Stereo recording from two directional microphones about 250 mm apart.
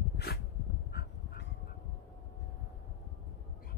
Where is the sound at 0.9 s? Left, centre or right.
Left.